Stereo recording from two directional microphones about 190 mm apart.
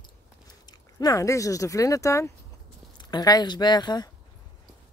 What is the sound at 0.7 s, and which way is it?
Speech, 20° left (ahead or behind).